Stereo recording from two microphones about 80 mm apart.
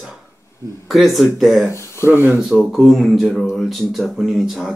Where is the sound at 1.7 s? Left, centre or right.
Left.